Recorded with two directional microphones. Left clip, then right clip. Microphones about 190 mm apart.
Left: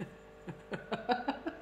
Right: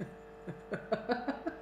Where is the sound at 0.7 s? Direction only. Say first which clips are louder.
Even; 5° left (ahead or behind).